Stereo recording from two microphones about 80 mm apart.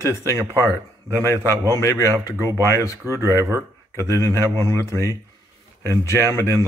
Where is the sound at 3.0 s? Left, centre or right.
Right.